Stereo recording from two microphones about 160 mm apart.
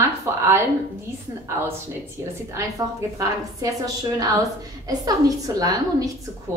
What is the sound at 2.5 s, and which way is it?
A woman's voice, 20° right (ahead or behind).